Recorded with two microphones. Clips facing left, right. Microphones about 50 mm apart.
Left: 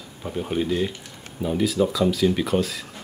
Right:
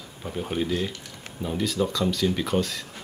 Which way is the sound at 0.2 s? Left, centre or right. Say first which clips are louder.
Left 3 dB; centre.